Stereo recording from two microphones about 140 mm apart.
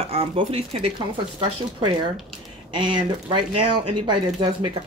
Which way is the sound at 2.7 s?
35° right (ahead or behind).